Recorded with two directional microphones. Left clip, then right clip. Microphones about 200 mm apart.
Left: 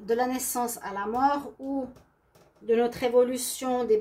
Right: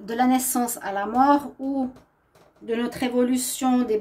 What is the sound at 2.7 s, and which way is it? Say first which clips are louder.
A woman's voice: left 3 dB; 40° right (ahead or behind).